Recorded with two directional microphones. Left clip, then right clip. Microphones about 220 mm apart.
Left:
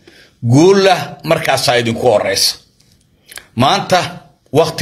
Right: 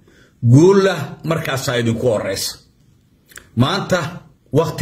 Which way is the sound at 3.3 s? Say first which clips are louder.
Left 7 dB; 15° right (ahead or behind).